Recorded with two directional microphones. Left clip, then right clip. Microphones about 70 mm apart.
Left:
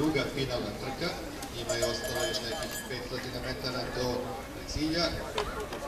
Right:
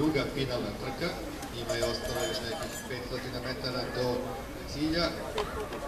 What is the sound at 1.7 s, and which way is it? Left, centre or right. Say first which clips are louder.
Speech: even; left.